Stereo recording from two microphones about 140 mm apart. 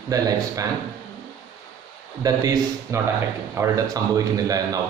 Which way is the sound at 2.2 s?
25° right (ahead or behind).